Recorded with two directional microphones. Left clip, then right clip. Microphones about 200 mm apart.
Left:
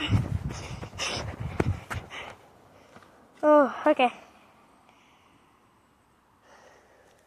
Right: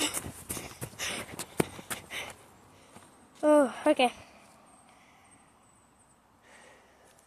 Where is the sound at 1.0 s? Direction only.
40° left (ahead or behind).